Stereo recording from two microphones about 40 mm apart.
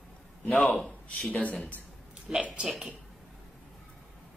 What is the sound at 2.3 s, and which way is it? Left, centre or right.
Speech, right.